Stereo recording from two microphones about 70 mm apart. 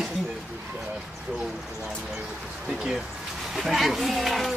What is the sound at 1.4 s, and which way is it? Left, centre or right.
Speech, centre.